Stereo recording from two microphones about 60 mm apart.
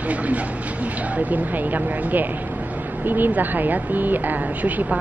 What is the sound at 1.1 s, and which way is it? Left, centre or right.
Speech, right.